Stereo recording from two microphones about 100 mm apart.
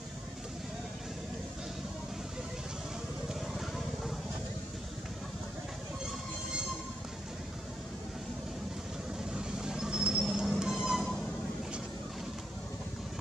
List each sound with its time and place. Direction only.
3.3 s vehicle: centre (ahead or behind)
9.3 s train: 5° right (ahead or behind)